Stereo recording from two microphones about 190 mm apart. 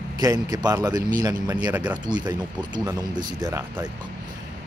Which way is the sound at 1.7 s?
5° right (ahead or behind).